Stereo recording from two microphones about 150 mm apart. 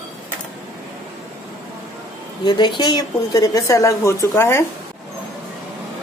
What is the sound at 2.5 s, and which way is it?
A woman's voice, 30° left (ahead or behind).